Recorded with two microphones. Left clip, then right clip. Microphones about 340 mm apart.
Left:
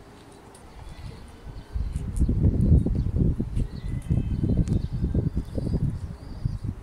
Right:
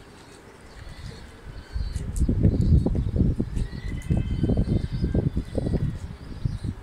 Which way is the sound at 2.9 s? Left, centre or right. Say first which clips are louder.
Right 3 dB; right.